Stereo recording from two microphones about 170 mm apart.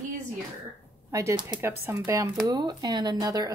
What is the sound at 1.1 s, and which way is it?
Speech, 20° right (ahead or behind).